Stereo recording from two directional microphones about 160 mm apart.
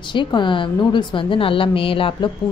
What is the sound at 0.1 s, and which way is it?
A woman's voice, 30° left (ahead or behind).